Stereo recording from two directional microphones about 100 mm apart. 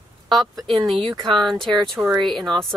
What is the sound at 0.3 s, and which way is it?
A woman's voice, centre (ahead or behind).